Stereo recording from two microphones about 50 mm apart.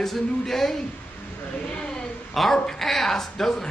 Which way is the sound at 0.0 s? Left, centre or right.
Centre.